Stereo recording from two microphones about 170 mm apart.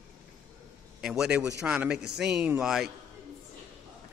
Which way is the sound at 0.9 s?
5° right (ahead or behind).